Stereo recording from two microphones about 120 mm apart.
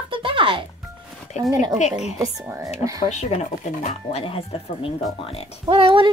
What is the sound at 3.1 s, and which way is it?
Speech, 75° left (ahead or behind).